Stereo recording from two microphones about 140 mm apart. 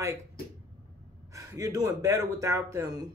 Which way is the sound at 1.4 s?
25° right (ahead or behind).